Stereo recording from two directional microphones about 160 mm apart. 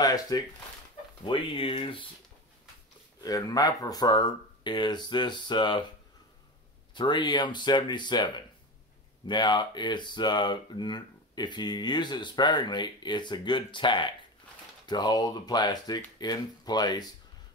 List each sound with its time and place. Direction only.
0.0 s speech: 25° left (ahead or behind)
3.2 s speech: 25° left (ahead or behind)
6.9 s speech: 30° left (ahead or behind)